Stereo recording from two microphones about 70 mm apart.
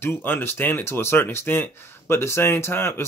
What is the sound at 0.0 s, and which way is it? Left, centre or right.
Speech, left.